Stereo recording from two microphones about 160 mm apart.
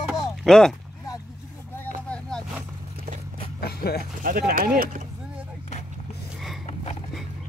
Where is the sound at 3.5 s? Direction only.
75° left (ahead or behind).